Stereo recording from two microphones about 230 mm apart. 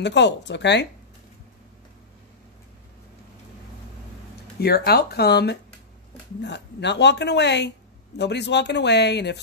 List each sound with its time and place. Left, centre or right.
0.0 s a woman's voice: left
4.6 s a woman's voice: left